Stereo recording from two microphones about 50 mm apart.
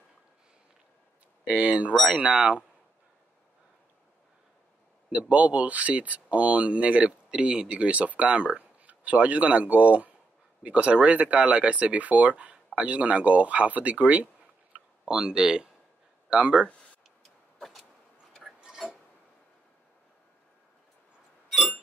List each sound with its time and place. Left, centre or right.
1.4 s speech: right
5.1 s speech: right
15.0 s speech: centre
17.6 s vehicle: centre